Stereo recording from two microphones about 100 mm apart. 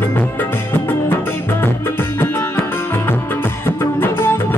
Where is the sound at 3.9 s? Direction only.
25° left (ahead or behind).